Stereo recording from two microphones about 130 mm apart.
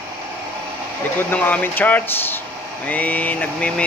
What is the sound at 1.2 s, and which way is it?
Speech, 15° left (ahead or behind).